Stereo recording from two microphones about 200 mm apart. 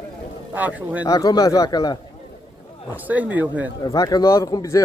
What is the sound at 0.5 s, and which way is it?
Speech, 10° right (ahead or behind).